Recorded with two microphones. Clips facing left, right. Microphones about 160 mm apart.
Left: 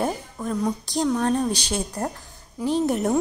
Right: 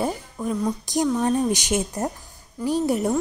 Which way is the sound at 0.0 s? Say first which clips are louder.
Even; 5° right (ahead or behind).